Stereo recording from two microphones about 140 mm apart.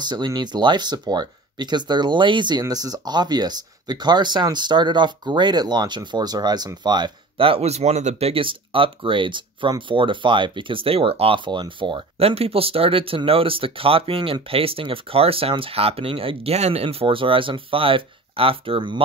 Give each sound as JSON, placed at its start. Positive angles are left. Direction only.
{"t": 0.0, "sound": "speech", "side_deg": -30}